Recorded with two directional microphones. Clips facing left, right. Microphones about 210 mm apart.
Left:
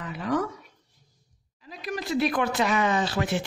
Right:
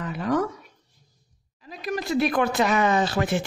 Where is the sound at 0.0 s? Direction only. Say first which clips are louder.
Right 3 dB; 45° right (ahead or behind).